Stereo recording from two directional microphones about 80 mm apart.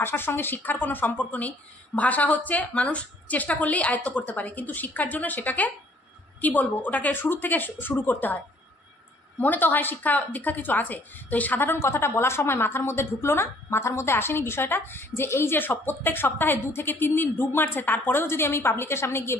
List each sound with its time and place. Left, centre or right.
0.0 s a woman's voice: left
9.4 s a woman's voice: left